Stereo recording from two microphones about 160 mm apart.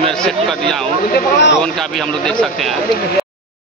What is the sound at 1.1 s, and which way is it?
Speech, 90° left.